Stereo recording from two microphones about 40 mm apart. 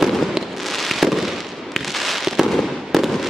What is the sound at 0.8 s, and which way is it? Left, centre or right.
Fireworks, centre.